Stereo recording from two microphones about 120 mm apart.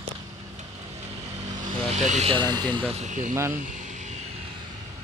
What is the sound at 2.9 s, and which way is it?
Speech, 80° right.